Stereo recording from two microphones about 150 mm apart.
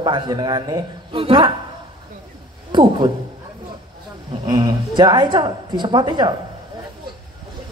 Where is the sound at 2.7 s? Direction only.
30° right (ahead or behind).